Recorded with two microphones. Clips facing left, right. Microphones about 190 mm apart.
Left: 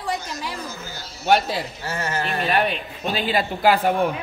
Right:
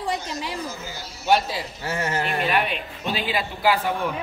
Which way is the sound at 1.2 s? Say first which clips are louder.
Left 2 dB; 60° left (ahead or behind).